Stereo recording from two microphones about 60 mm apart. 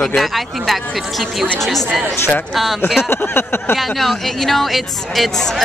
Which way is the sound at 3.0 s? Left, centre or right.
Left.